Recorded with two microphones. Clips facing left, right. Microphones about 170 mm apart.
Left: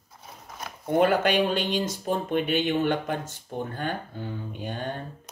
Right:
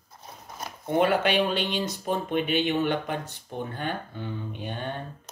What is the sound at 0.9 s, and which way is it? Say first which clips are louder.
Speech: left 1 dB; 45° left (ahead or behind).